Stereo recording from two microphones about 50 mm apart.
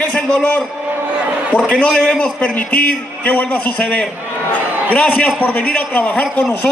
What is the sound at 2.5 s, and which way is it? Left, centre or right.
A man's voice, left.